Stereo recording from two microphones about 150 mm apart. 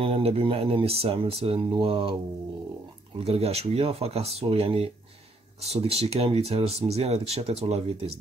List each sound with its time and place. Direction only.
0.0 s speech: 40° right (ahead or behind)
3.3 s speech: 40° right (ahead or behind)